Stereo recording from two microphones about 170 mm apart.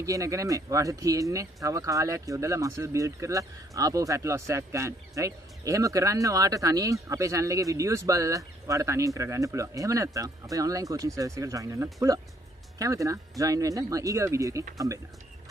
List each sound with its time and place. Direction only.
0.0 s speech: 20° right (ahead or behind)